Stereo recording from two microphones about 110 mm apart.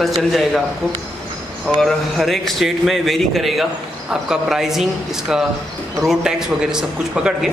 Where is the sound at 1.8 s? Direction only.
Centre (ahead or behind).